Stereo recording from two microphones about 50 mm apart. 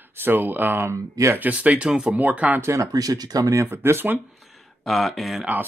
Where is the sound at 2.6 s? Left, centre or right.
Right.